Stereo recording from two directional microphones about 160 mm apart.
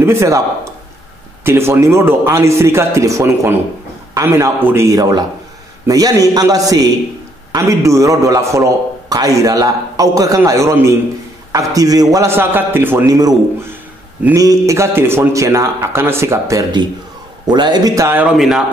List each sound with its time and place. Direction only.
0.0 s a man's voice: 15° right (ahead or behind)
1.4 s a man's voice: 15° right (ahead or behind)